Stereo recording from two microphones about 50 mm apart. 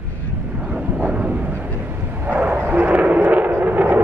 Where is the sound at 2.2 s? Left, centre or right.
Right.